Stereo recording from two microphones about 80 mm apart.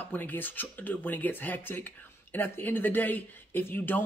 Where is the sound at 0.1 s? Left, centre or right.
Left.